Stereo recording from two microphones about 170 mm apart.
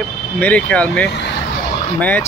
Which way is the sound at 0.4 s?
10° left (ahead or behind).